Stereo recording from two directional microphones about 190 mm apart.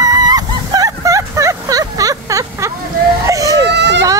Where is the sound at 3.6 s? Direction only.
65° right (ahead or behind).